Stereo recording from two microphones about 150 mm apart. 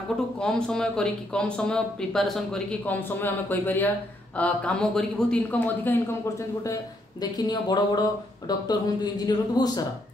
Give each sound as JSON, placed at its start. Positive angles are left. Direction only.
{"t": 0.4, "sound": "speech", "side_deg": 5}
{"t": 3.0, "sound": "speech", "side_deg": 15}
{"t": 6.6, "sound": "speech", "side_deg": 25}